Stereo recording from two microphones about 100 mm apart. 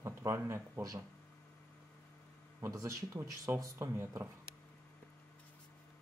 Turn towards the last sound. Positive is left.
turn(degrees=-25)  # may be behind; listen again after turning